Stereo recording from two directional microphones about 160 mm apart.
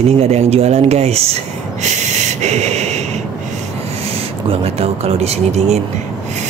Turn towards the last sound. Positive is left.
turn(degrees=-40)  # may be behind; listen again after turning